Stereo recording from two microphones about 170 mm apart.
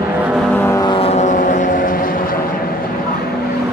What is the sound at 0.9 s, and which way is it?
Vehicle, 35° left (ahead or behind).